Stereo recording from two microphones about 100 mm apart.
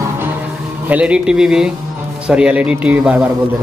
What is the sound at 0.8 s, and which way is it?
Speech, 15° right (ahead or behind).